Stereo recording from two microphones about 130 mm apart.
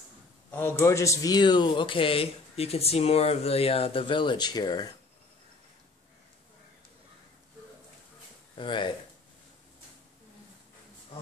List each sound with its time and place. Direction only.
0.5 s speech: 15° left (ahead or behind); by 4.9 s 30° left (ahead or behind)
8.5 s speech: 40° left (ahead or behind)